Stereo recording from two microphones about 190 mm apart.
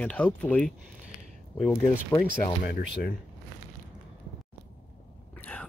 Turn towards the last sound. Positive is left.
turn(degrees=5)  # may be behind; listen again after turning